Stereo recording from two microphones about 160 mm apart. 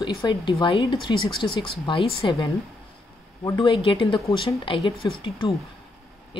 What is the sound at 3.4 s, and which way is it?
Speech, 30° left (ahead or behind).